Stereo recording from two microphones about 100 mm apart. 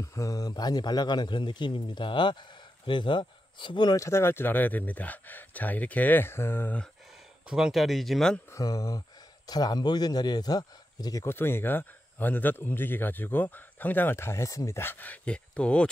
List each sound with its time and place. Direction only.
0.0 s a man's voice: 35° left (ahead or behind)
4.0 s speech: 25° left (ahead or behind)
7.4 s speech: 5° right (ahead or behind)
8.5 s speech: 35° left (ahead or behind)
11.2 s speech: 25° left (ahead or behind)